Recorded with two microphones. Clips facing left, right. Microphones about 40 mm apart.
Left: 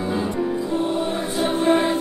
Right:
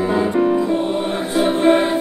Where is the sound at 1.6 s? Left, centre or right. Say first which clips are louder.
Right 3 dB; right.